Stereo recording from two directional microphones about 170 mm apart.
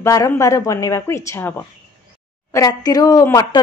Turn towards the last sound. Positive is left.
turn(degrees=20)  # may be behind; listen again after turning